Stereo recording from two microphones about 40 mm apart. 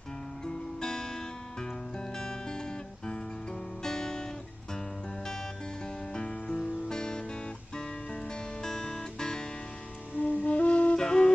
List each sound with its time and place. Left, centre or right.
0.5 s music: centre
2.1 s music: centre
3.8 s guitar: centre
6.1 s music: left
8.6 s music: centre
10.1 s flute: left
11.0 s flute: centre